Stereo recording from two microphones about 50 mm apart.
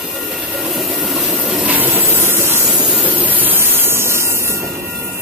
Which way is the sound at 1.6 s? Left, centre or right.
Right.